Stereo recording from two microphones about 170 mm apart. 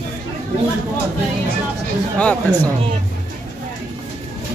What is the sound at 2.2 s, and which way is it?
Speech, 10° left (ahead or behind).